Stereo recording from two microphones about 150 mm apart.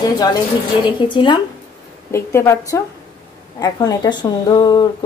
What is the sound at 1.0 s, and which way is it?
Speech, 35° left (ahead or behind).